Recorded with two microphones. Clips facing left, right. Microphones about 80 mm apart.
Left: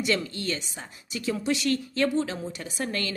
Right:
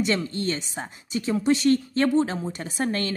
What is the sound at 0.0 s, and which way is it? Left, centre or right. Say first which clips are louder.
A woman's voice: right 3 dB; right.